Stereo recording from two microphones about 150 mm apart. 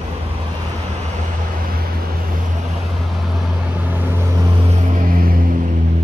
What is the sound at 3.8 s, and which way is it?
Vehicle, 15° right (ahead or behind).